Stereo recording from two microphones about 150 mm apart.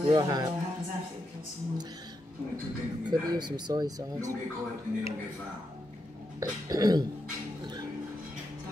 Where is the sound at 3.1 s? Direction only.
30° right (ahead or behind).